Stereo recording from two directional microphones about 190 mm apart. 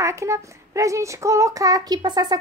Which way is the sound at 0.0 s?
15° right (ahead or behind).